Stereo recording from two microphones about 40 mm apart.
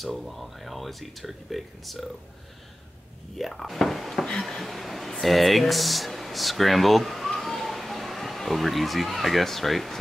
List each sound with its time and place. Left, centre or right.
0.2 s speech: centre
3.3 s speech: centre
4.4 s a sound: centre
5.2 s speech: centre